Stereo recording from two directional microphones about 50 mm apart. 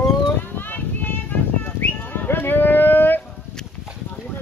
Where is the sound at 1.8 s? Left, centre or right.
Left.